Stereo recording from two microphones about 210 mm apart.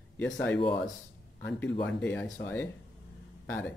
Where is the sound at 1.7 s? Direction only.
55° left (ahead or behind).